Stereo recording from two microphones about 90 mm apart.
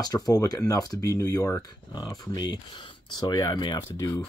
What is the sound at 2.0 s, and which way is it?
Speech, 45° left (ahead or behind).